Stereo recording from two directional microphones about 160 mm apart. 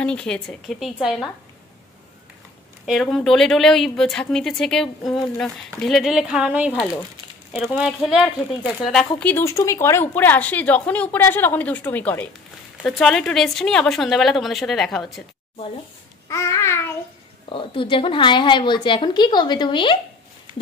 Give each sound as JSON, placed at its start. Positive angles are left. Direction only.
{"t": 0.0, "sound": "speech", "side_deg": 5}
{"t": 2.8, "sound": "speech", "side_deg": 0}
{"t": 9.2, "sound": "speech", "side_deg": 15}
{"t": 16.3, "sound": "babbling", "side_deg": 20}
{"t": 17.5, "sound": "a woman's voice", "side_deg": 35}